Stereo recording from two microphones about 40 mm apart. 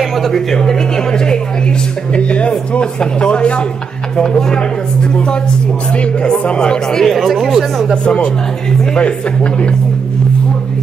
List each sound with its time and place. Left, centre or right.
0.0 s speech: centre
2.1 s speech: left
4.2 s speech: centre
6.4 s speech: left
7.0 s speech: centre
8.9 s speech: left